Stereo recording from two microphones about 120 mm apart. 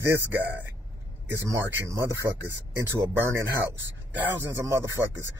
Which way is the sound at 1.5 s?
25° right (ahead or behind).